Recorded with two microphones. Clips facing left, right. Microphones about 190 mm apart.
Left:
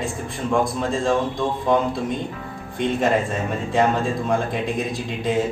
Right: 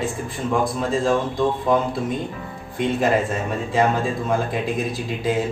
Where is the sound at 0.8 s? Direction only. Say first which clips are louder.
Right 1 dB; centre (ahead or behind).